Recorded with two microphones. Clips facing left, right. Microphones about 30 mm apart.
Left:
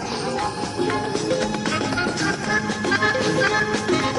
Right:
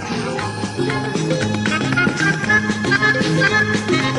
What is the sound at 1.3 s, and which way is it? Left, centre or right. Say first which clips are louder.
Music: right 4 dB; right.